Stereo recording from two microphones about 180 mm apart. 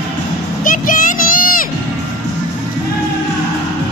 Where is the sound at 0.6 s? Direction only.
50° left (ahead or behind).